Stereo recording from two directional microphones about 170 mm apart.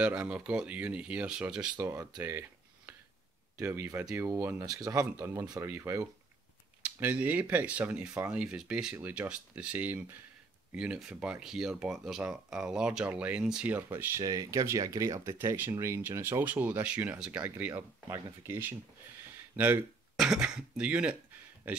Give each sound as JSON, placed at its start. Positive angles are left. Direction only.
{"t": 0.0, "sound": "speech", "side_deg": -5}